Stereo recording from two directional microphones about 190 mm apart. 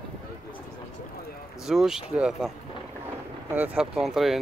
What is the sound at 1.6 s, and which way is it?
Speech, centre (ahead or behind).